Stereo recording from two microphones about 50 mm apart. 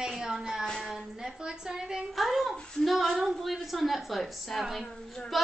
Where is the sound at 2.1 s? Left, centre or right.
Centre.